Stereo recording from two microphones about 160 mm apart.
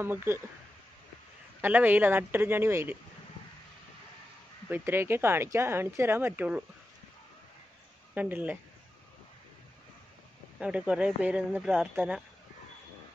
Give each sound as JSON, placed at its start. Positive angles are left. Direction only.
{"t": 0.0, "sound": "speech", "side_deg": -15}
{"t": 1.6, "sound": "speech", "side_deg": -10}
{"t": 4.6, "sound": "speech", "side_deg": -15}
{"t": 8.1, "sound": "speech", "side_deg": -10}
{"t": 10.6, "sound": "speech", "side_deg": -10}